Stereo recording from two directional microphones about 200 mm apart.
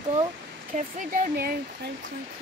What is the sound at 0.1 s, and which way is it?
Speech, 35° right (ahead or behind).